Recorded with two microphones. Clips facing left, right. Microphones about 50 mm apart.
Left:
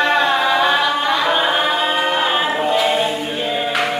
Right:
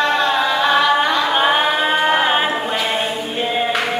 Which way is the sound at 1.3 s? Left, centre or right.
Centre.